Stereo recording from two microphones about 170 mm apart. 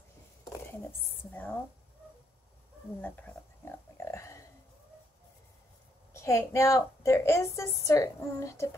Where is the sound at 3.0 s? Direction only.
10° left (ahead or behind).